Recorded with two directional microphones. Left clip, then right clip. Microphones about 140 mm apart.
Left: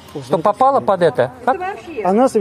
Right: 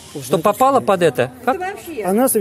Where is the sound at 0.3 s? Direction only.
65° right (ahead or behind).